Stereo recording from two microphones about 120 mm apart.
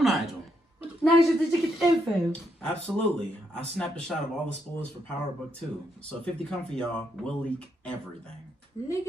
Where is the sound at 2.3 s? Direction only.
10° left (ahead or behind).